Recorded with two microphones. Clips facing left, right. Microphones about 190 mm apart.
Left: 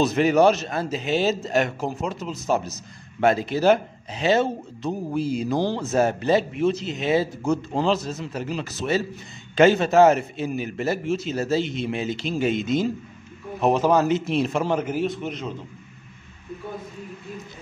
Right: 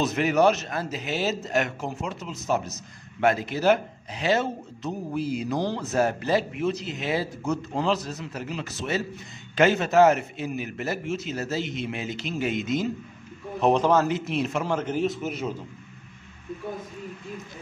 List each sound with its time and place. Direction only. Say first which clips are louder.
0.0 s a man's voice: left 4 dB; 30° left (ahead or behind)
13.6 s a man's voice: left 1 dB; 5° left (ahead or behind)
14.0 s a man's voice: left 4 dB; 30° left (ahead or behind)
14.7 s a man's voice: left 3 dB; 15° left (ahead or behind)
15.0 s a man's voice: even; centre (ahead or behind)